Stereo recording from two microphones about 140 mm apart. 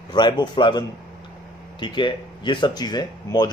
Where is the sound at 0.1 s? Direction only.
30° left (ahead or behind).